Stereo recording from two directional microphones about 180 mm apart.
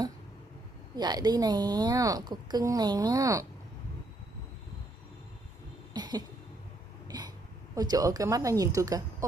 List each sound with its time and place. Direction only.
0.9 s a woman's voice: 20° right (ahead or behind)
5.9 s cough: 25° right (ahead or behind)
7.1 s speech: 20° right (ahead or behind)